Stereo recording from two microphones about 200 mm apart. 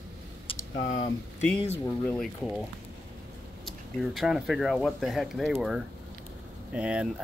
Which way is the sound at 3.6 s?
Centre (ahead or behind).